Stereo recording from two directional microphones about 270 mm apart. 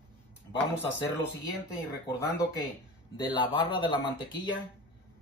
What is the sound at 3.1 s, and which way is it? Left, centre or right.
Speech, centre.